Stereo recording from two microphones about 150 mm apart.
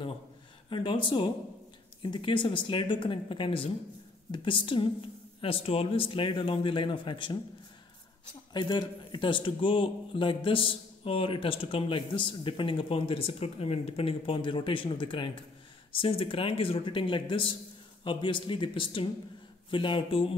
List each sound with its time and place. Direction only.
0.7 s a man's voice: 30° left (ahead or behind)
8.5 s a man's voice: 30° left (ahead or behind)